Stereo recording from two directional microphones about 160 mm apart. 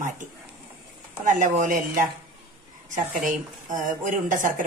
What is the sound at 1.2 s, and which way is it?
Speech, 55° right (ahead or behind).